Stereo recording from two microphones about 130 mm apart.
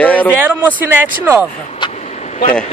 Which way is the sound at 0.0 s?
10° left (ahead or behind).